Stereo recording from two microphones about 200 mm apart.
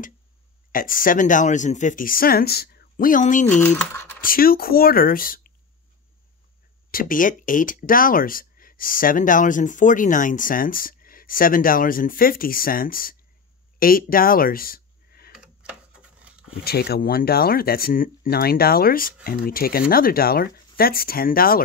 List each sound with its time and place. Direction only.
0.7 s speech: 45° left (ahead or behind)
3.4 s speech: 10° left (ahead or behind)
4.2 s speech: 45° left (ahead or behind)
6.9 s speech: 45° left (ahead or behind)
15.3 s a sound: 5° right (ahead or behind)
16.6 s speech: 50° left (ahead or behind)